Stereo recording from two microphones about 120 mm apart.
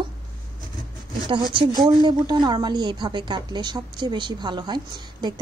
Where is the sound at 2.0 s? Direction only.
40° right (ahead or behind).